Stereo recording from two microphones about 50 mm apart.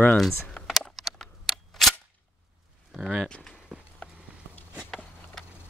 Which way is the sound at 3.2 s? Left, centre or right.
Centre.